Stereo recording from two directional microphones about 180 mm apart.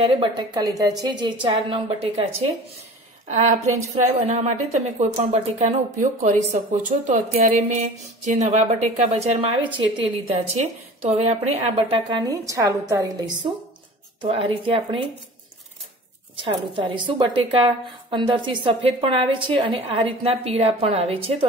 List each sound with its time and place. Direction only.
0.1 s a woman's voice: 25° right (ahead or behind)
4.0 s speech: 40° right (ahead or behind)
12.3 s a woman's voice: 20° right (ahead or behind)
16.3 s a woman's voice: 25° right (ahead or behind)